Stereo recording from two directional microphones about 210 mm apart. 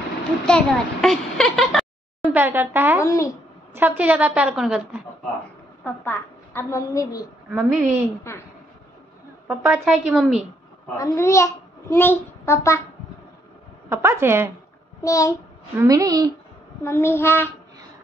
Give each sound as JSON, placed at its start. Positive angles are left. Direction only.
{"t": 0.5, "sound": "a child's voice", "side_deg": 5}
{"t": 3.0, "sound": "a woman's voice", "side_deg": 15}
{"t": 3.7, "sound": "a woman's voice", "side_deg": -10}
{"t": 5.9, "sound": "a woman's voice", "side_deg": 10}
{"t": 7.5, "sound": "a woman's voice", "side_deg": -5}
{"t": 8.2, "sound": "a woman's voice", "side_deg": 15}
{"t": 9.5, "sound": "a woman's voice", "side_deg": -5}
{"t": 11.0, "sound": "a child's voice", "side_deg": 15}
{"t": 13.8, "sound": "a woman's voice", "side_deg": -10}
{"t": 15.0, "sound": "a child's voice", "side_deg": 15}
{"t": 15.8, "sound": "a woman's voice", "side_deg": -15}
{"t": 16.8, "sound": "a woman's voice", "side_deg": 10}